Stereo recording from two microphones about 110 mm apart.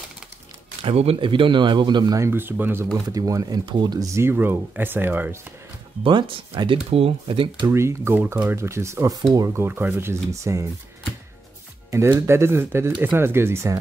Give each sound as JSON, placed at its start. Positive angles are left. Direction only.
{"t": 0.8, "sound": "speech", "side_deg": -60}
{"t": 2.1, "sound": "speech", "side_deg": -20}
{"t": 3.1, "sound": "speech", "side_deg": -30}
{"t": 6.0, "sound": "speech", "side_deg": -50}
{"t": 7.6, "sound": "speech", "side_deg": -25}
{"t": 9.5, "sound": "speech", "side_deg": -20}
{"t": 11.9, "sound": "speech", "side_deg": -25}